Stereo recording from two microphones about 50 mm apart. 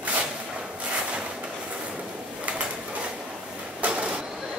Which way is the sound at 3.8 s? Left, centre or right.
Right.